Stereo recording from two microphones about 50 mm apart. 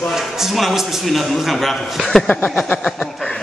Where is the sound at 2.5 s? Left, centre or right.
Left.